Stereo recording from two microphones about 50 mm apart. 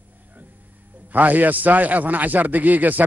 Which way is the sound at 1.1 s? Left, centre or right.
Right.